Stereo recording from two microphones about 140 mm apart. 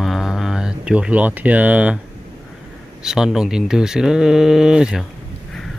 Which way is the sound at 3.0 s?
5° right (ahead or behind).